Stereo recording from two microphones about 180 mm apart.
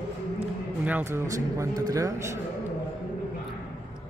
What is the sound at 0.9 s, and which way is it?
A man's voice, 10° right (ahead or behind).